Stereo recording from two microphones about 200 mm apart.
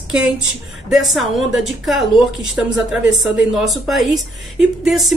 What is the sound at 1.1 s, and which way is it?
A woman's voice, centre (ahead or behind).